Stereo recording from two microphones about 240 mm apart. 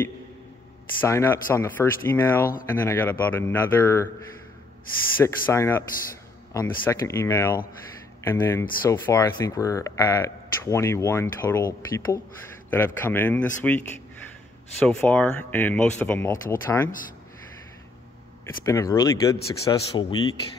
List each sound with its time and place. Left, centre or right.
1.0 s speech: centre
5.1 s speech: centre
12.6 s speech: centre
18.4 s speech: centre